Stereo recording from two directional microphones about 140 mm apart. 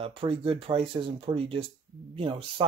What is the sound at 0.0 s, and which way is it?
Speech, 40° right (ahead or behind).